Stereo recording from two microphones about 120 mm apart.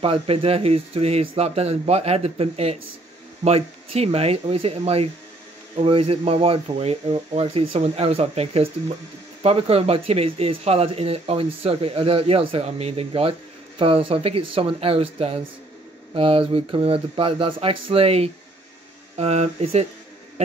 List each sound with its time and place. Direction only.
0.0 s speech: 55° right (ahead or behind)